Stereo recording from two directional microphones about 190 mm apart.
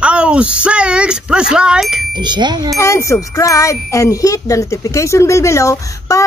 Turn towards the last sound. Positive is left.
turn(degrees=15)  # may be behind; listen again after turning